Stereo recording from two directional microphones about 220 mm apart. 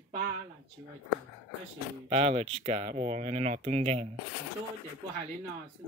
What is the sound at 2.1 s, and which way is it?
Speech, 25° right (ahead or behind).